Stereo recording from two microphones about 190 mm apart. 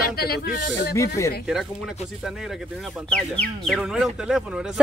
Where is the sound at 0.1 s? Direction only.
55° left (ahead or behind).